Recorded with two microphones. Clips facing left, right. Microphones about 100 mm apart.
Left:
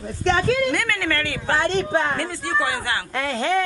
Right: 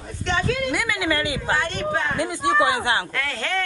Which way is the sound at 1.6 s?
30° left (ahead or behind).